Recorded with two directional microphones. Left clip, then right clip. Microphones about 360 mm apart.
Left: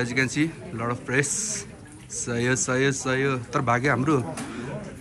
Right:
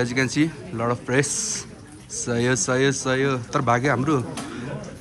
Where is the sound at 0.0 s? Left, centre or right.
Centre.